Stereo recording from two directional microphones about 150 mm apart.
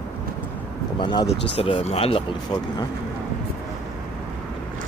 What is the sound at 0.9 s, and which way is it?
Speech, 30° left (ahead or behind).